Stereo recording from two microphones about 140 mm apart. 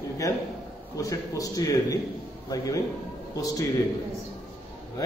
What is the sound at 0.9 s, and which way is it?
A man's voice, 25° left (ahead or behind).